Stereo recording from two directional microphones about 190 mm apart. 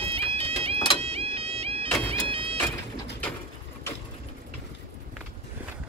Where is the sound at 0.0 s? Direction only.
30° right (ahead or behind).